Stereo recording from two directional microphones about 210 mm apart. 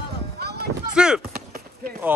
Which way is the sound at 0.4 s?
50° right (ahead or behind).